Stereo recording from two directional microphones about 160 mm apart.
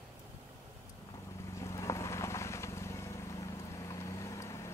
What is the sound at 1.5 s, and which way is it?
Vehicle, 20° left (ahead or behind).